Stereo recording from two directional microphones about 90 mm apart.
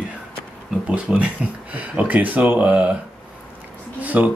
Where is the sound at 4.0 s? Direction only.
15° right (ahead or behind).